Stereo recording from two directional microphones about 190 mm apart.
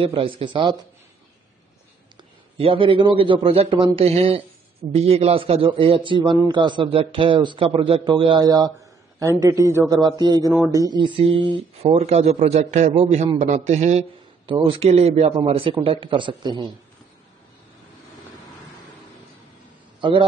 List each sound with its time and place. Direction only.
0.0 s a man's voice: 30° right (ahead or behind)
2.5 s a man's voice: 30° right (ahead or behind)
20.0 s a man's voice: 25° right (ahead or behind)